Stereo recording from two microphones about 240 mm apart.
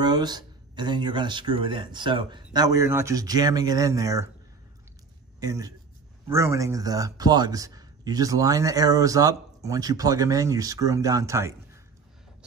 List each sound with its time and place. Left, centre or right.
0.0 s speech: centre
5.4 s speech: centre